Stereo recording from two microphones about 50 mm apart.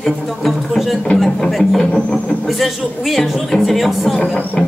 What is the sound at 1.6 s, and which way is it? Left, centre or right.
Speech, centre.